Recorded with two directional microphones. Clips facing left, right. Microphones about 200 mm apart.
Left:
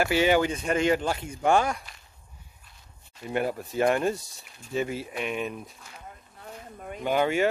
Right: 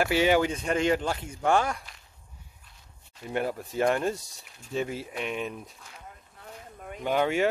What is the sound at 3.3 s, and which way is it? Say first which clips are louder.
Speech: left 2 dB; 5° left (ahead or behind).